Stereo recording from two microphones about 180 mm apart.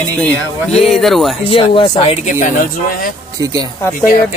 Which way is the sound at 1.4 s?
30° left (ahead or behind).